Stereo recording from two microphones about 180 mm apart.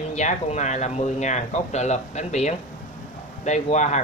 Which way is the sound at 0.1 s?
40° left (ahead or behind).